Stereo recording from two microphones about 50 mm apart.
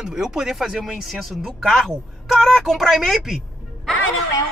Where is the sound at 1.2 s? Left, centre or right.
Centre.